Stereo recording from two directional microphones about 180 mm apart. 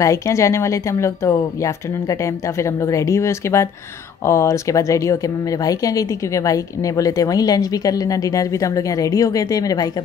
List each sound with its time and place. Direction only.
0.0 s a woman's voice: 15° left (ahead or behind)